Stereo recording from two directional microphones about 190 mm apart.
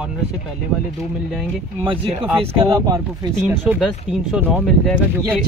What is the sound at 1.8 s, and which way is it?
Speech, 25° right (ahead or behind).